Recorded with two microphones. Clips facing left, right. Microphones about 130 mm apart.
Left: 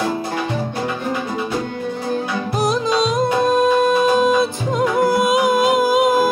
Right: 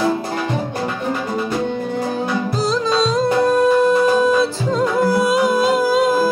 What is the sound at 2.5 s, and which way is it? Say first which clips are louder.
Music: left 2 dB; 15° left (ahead or behind).